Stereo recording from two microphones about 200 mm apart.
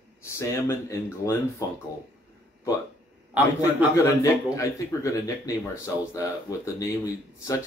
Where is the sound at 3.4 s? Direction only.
10° right (ahead or behind).